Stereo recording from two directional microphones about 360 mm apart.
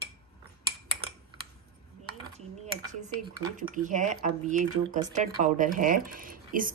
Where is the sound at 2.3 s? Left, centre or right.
Centre.